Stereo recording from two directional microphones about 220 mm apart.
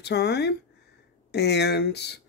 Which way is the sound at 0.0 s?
50° left (ahead or behind).